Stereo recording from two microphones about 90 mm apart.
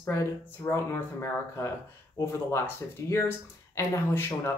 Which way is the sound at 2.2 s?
30° left (ahead or behind).